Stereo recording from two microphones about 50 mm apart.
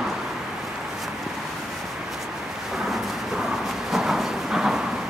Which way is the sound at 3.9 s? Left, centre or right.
Centre.